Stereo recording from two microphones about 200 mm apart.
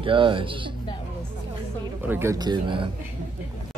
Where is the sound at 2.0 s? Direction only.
10° right (ahead or behind).